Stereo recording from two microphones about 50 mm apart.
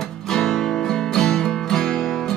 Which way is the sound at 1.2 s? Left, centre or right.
Centre.